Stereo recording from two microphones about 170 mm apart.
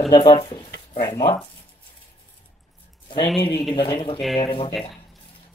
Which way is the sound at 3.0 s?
30° left (ahead or behind).